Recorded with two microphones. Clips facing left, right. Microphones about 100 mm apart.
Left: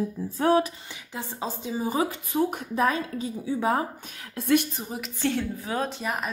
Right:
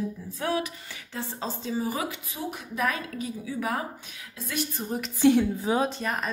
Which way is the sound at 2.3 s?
50° left (ahead or behind).